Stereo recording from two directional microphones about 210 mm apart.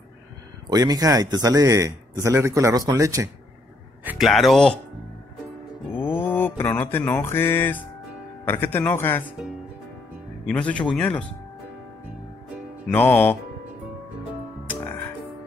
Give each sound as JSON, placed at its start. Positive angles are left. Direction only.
{"t": 0.7, "sound": "a man's voice", "side_deg": -15}
{"t": 5.9, "sound": "mantra", "side_deg": 10}
{"t": 8.5, "sound": "speech", "side_deg": 10}
{"t": 10.4, "sound": "speech", "side_deg": 5}
{"t": 12.8, "sound": "speech", "side_deg": 10}
{"t": 14.7, "sound": "frog", "side_deg": 10}